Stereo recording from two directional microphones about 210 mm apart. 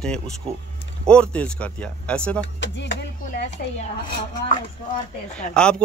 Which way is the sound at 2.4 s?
55° left (ahead or behind).